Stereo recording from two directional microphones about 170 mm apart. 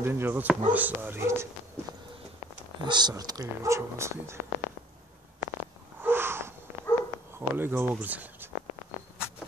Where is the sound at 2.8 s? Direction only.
25° right (ahead or behind).